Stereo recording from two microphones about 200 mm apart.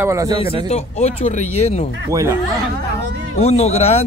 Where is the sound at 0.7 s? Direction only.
30° left (ahead or behind).